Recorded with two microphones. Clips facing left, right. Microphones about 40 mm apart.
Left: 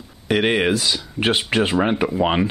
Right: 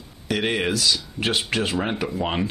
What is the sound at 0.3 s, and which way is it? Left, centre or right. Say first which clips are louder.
Speech: left 5 dB; left.